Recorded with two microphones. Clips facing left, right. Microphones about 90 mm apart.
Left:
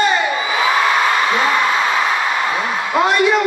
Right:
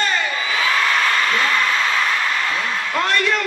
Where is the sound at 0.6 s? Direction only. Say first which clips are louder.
Left 4 dB; 20° left (ahead or behind).